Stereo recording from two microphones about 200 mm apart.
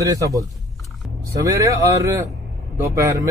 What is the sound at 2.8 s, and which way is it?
Speech, 15° right (ahead or behind).